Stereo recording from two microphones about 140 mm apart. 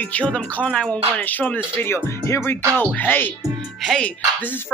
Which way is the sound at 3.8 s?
Centre (ahead or behind).